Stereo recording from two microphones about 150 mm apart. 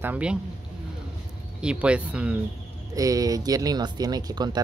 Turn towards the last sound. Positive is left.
turn(degrees=-30)  # may be behind; listen again after turning